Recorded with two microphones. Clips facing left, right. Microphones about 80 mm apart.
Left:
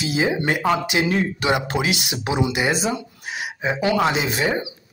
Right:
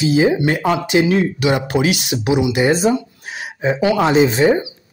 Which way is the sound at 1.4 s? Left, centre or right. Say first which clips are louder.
Right 4 dB; left.